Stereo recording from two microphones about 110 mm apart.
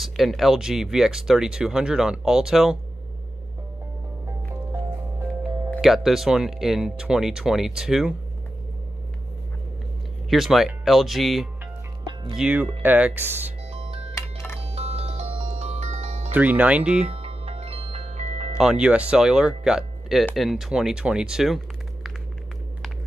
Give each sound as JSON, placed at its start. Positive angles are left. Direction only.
{"t": 0.0, "sound": "speech", "side_deg": 0}
{"t": 5.8, "sound": "speech", "side_deg": -5}
{"t": 10.3, "sound": "speech", "side_deg": 0}
{"t": 12.1, "sound": "music", "side_deg": -50}
{"t": 12.4, "sound": "speech", "side_deg": -15}
{"t": 13.7, "sound": "music", "side_deg": -60}
{"t": 16.3, "sound": "speech", "side_deg": -15}
{"t": 17.0, "sound": "music", "side_deg": -60}
{"t": 18.6, "sound": "speech", "side_deg": -5}